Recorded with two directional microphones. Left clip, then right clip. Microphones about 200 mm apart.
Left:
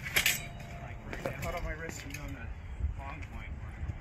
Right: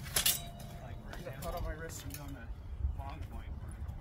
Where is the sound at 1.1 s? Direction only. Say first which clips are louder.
Left 6 dB; 15° right (ahead or behind).